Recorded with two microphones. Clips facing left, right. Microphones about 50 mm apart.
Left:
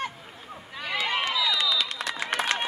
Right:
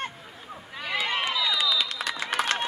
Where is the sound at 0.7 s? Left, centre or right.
Centre.